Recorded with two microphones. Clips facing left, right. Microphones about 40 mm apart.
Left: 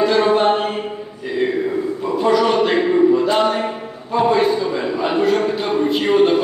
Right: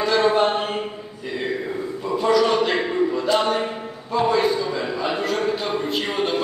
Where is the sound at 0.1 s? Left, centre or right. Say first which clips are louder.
Left 3 dB; centre.